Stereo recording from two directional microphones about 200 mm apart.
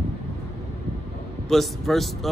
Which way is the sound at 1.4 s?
Centre (ahead or behind).